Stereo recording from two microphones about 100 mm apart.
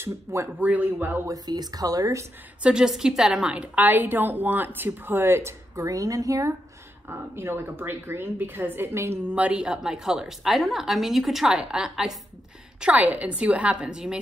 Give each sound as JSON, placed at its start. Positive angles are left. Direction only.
{"t": 0.0, "sound": "a woman's voice", "side_deg": -30}
{"t": 0.6, "sound": "a woman's voice", "side_deg": -15}
{"t": 1.3, "sound": "speech", "side_deg": -40}
{"t": 2.6, "sound": "a woman's voice", "side_deg": -5}
{"t": 7.1, "sound": "a woman's voice", "side_deg": -25}
{"t": 9.3, "sound": "a woman's voice", "side_deg": -10}
{"t": 12.8, "sound": "a woman's voice", "side_deg": -15}